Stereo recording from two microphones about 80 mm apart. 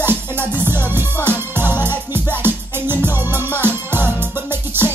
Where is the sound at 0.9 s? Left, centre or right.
Right.